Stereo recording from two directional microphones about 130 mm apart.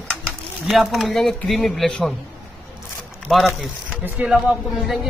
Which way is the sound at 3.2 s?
Centre (ahead or behind).